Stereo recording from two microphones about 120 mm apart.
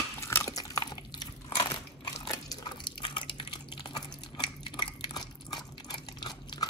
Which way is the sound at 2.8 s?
45° left (ahead or behind).